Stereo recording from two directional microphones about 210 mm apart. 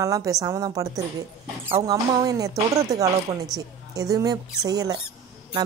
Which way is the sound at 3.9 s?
15° right (ahead or behind).